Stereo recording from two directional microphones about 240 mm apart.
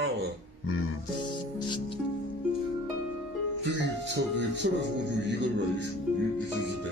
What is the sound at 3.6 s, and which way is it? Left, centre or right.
Speech, right.